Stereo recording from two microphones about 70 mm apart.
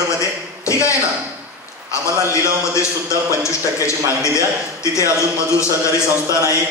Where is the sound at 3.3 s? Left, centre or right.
Left.